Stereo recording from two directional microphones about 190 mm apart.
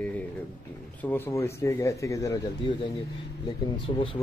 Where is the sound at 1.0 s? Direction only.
10° left (ahead or behind).